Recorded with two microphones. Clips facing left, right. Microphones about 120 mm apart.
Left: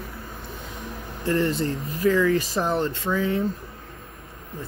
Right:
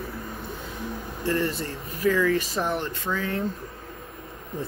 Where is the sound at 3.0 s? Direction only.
15° left (ahead or behind).